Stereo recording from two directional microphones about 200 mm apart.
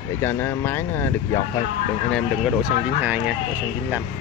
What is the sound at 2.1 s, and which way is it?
Speech, 5° right (ahead or behind).